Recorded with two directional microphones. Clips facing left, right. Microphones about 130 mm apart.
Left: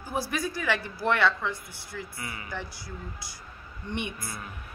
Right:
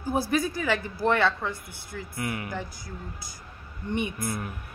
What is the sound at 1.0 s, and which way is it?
Speech, 40° right (ahead or behind).